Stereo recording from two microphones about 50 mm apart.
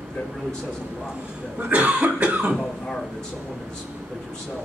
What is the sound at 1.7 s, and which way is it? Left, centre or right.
Cough, right.